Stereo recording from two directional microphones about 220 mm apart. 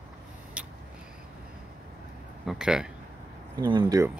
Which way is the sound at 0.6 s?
5° right (ahead or behind).